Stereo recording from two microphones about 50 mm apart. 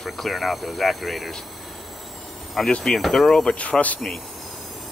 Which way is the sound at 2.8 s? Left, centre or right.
Centre.